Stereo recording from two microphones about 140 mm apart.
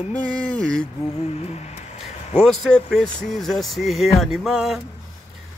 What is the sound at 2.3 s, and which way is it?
Speech, 5° left (ahead or behind).